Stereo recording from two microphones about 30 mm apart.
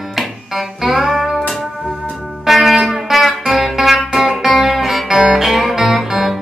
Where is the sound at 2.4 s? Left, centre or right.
Centre.